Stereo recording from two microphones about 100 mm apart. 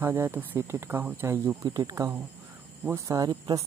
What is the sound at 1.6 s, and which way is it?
Speech, 35° right (ahead or behind).